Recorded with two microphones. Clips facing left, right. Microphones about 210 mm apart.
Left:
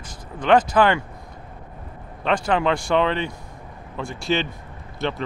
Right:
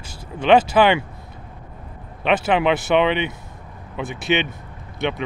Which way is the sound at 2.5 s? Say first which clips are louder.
Right 2 dB; 20° right (ahead or behind).